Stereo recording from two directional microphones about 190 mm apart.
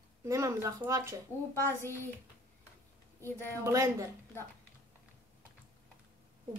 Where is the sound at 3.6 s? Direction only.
15° right (ahead or behind).